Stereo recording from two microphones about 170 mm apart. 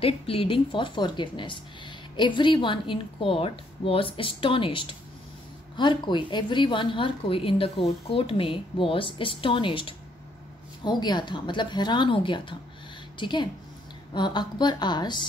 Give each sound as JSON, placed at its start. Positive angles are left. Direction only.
{"t": 0.0, "sound": "a woman's voice", "side_deg": 35}